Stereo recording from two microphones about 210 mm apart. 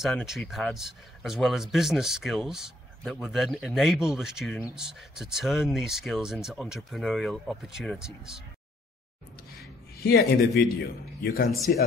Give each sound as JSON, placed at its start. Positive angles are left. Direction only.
{"t": 0.0, "sound": "speech", "side_deg": 0}
{"t": 9.9, "sound": "a man's voice", "side_deg": 50}